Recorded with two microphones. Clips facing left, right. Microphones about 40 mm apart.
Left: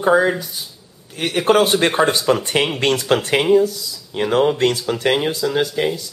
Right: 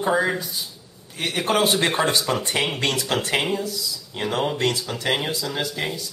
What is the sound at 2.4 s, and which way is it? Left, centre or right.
Speech, left.